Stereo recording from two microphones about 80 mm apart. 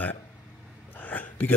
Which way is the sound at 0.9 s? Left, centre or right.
Centre.